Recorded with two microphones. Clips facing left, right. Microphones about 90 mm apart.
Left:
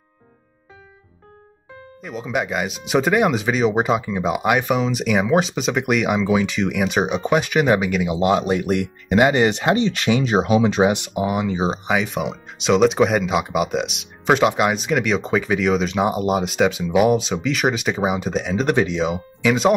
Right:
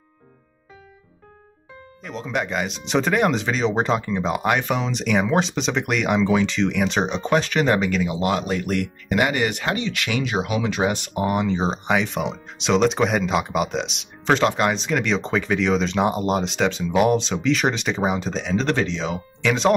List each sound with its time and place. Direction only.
2.0 s speech: 5° left (ahead or behind)
8.1 s speech: 20° left (ahead or behind)
11.1 s speech: 5° left (ahead or behind)